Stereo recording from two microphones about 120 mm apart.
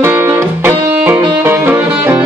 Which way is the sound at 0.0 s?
20° right (ahead or behind).